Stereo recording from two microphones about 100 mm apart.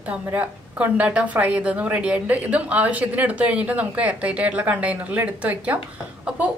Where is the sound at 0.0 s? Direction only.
15° right (ahead or behind).